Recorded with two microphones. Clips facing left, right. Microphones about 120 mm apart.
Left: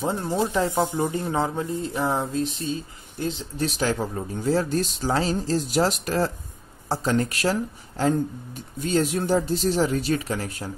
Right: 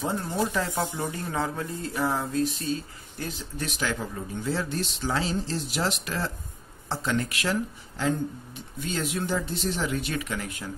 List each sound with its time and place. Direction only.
0.0 s speech: 25° left (ahead or behind)